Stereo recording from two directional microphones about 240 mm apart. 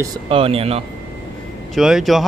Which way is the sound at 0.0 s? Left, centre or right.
Right.